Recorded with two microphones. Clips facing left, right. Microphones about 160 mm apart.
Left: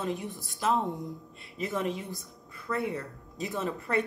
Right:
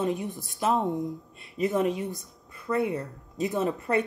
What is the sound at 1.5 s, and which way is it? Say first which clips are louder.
Speech: right 6 dB; 15° right (ahead or behind).